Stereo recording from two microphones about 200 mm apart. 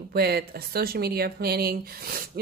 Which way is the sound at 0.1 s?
50° right (ahead or behind).